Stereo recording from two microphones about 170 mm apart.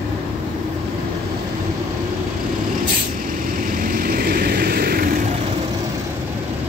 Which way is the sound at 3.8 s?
55° right (ahead or behind).